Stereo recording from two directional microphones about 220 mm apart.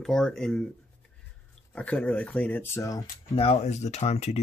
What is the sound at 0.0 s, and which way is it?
Speech, centre (ahead or behind).